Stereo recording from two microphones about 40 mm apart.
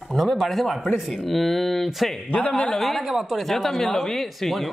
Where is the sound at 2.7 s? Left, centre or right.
Centre.